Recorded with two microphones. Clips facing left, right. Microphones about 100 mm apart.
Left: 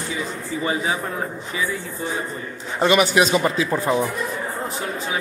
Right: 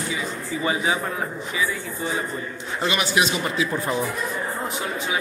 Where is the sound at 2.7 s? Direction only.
40° left (ahead or behind).